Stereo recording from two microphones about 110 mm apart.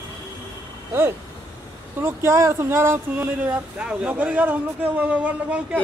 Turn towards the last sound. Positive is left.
turn(degrees=-10)  # may be behind; listen again after turning